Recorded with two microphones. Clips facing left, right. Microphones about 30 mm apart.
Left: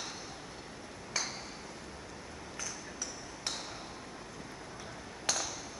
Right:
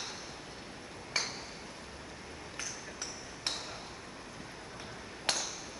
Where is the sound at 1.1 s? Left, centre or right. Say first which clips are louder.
Right 2 dB; right.